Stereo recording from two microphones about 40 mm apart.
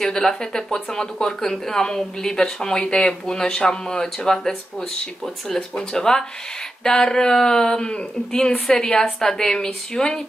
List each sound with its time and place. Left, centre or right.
0.0 s speech: centre